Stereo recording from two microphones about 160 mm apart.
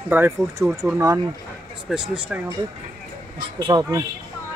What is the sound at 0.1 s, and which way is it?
Speech, 15° right (ahead or behind).